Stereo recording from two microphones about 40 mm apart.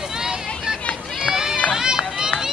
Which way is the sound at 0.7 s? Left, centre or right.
Centre.